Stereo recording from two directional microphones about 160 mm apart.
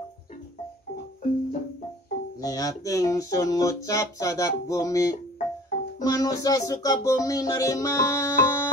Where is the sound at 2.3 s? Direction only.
20° left (ahead or behind).